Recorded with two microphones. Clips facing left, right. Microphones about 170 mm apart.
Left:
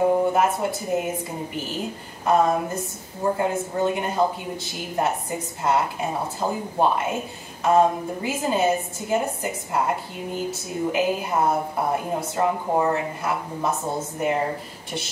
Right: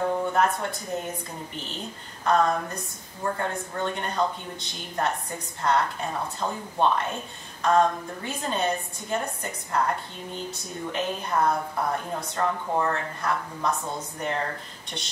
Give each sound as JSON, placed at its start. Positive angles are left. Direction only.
{"t": 0.0, "sound": "a sound", "side_deg": 10}
{"t": 0.6, "sound": "a woman's voice", "side_deg": 5}
{"t": 11.3, "sound": "a woman's voice", "side_deg": 25}
{"t": 11.9, "sound": "a woman's voice", "side_deg": 10}